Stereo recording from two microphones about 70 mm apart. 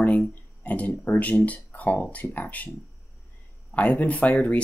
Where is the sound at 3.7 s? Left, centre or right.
Left.